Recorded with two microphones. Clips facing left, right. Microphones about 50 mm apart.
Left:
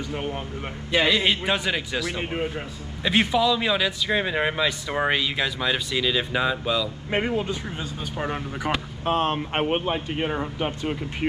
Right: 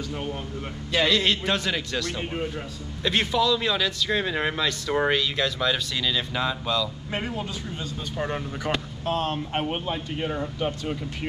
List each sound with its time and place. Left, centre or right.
0.1 s a man's voice: left
7.1 s speech: left
8.2 s a man's voice: centre
9.0 s speech: left